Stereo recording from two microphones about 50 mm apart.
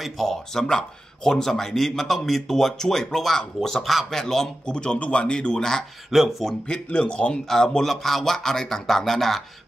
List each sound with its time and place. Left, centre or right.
0.0 s a man's voice: centre
6.0 s speech: centre
6.9 s speech: left
7.4 s a man's voice: centre